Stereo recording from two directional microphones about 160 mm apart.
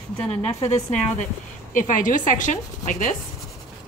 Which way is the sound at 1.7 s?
55° left (ahead or behind).